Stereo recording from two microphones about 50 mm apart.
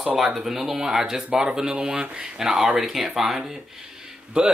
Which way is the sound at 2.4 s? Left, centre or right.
Centre.